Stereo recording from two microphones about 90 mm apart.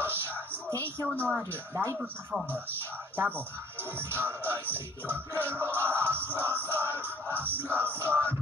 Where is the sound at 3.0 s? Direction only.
25° right (ahead or behind).